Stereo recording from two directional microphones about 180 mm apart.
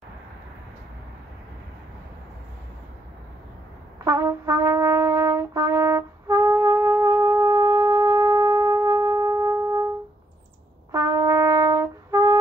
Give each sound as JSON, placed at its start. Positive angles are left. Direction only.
{"t": 4.0, "sound": "brass instrument", "side_deg": -15}
{"t": 10.9, "sound": "brass instrument", "side_deg": -15}